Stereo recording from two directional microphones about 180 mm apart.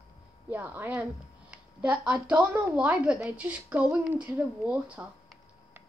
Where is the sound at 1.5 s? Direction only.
10° right (ahead or behind).